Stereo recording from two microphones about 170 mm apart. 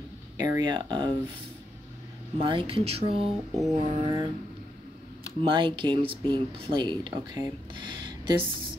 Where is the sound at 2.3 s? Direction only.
30° right (ahead or behind).